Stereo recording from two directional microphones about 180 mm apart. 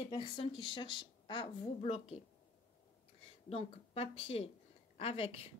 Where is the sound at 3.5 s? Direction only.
35° left (ahead or behind).